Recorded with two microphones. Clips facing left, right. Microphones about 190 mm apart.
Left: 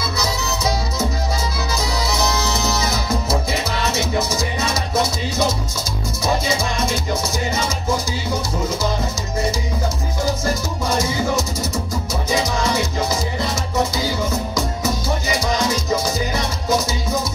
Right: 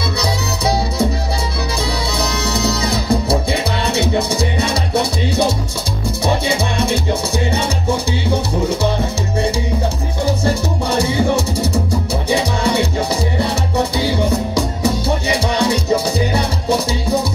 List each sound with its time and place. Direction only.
0.2 s music: 30° right (ahead or behind)
10.2 s music: 30° right (ahead or behind)